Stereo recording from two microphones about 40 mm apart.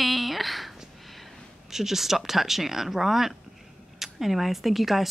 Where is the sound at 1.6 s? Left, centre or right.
Centre.